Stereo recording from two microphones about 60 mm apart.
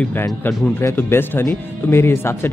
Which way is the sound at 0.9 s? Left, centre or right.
Left.